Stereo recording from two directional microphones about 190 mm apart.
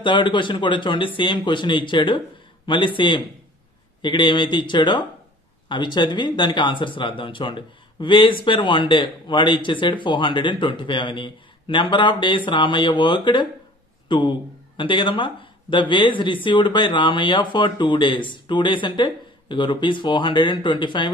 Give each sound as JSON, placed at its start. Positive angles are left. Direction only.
{"t": 0.0, "sound": "a man's voice", "side_deg": 25}